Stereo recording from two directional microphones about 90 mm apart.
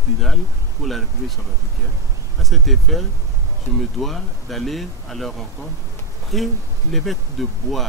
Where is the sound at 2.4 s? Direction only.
Centre (ahead or behind).